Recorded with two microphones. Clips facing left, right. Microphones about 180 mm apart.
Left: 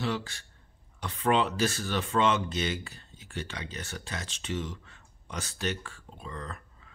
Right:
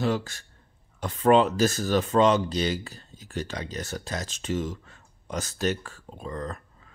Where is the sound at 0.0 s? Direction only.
45° right (ahead or behind).